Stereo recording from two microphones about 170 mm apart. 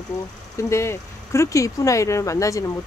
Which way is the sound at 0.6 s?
15° left (ahead or behind).